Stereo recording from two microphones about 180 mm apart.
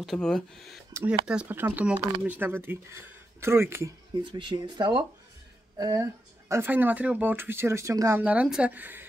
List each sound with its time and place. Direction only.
0.0 s speech: 5° left (ahead or behind); by 3.9 s 15° right (ahead or behind)
4.2 s speech: 25° right (ahead or behind); by 9.0 s 10° right (ahead or behind)